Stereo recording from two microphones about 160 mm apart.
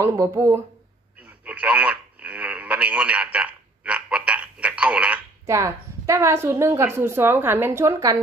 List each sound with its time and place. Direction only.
0.0 s a woman's voice: 15° right (ahead or behind)
1.4 s radio: 10° right (ahead or behind)
5.5 s a woman's voice: 20° right (ahead or behind)